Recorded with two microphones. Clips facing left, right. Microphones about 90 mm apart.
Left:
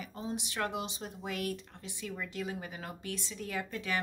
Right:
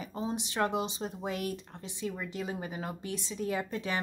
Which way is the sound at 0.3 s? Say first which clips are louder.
Right 4 dB; 25° right (ahead or behind).